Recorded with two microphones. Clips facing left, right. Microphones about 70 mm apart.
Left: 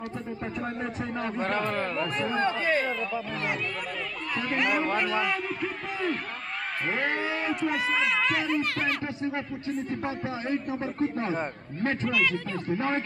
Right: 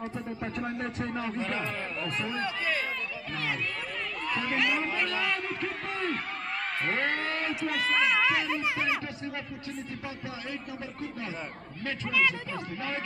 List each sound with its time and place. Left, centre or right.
0.6 s a man's voice: centre
1.7 s a man's voice: left
4.4 s a man's voice: centre
10.0 s a man's voice: left